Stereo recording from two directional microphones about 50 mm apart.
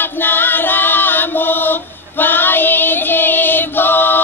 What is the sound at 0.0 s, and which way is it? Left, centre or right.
Chant, left.